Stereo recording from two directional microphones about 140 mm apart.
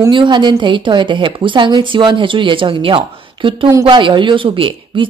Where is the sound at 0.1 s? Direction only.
35° right (ahead or behind).